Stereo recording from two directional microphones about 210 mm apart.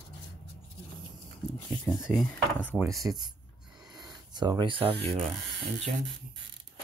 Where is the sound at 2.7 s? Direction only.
15° right (ahead or behind).